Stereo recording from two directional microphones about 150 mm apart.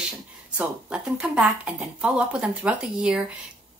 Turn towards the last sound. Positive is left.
turn(degrees=-5)  # may be behind; listen again after turning